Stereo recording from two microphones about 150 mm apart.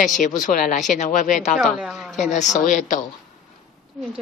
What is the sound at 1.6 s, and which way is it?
Speech, 5° right (ahead or behind).